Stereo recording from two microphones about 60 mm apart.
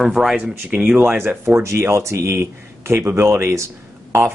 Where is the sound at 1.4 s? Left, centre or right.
Right.